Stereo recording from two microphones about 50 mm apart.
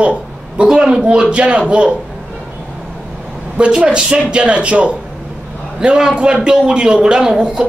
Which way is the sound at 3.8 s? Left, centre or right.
Centre.